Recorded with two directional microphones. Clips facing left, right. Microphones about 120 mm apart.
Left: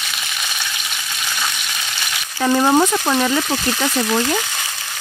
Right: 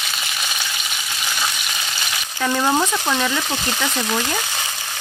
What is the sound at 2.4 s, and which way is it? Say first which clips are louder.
Speech: left 5 dB; 25° left (ahead or behind).